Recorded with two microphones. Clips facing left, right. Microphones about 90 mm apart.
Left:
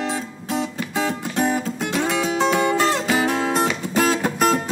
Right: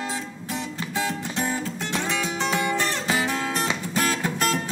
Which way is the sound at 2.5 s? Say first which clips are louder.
Left 6 dB; 20° left (ahead or behind).